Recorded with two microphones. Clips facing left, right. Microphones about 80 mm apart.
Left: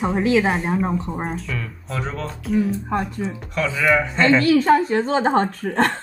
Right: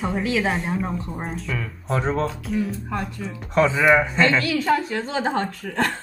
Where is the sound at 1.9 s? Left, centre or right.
Right.